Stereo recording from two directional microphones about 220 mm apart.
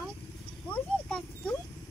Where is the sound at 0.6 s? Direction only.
5° left (ahead or behind).